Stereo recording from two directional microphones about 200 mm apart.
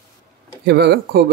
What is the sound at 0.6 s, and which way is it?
Speech, 55° right (ahead or behind).